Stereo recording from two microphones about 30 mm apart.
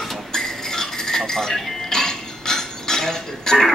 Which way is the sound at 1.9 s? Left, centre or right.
Centre.